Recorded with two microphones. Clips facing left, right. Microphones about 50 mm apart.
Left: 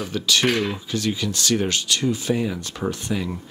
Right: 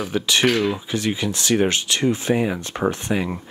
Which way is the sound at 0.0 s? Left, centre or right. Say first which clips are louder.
Right 2 dB; right.